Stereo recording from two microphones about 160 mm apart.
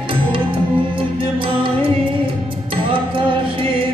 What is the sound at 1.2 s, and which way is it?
Music, 30° right (ahead or behind).